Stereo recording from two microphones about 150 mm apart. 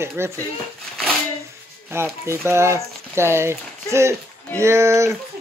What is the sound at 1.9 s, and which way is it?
Speech, 15° right (ahead or behind).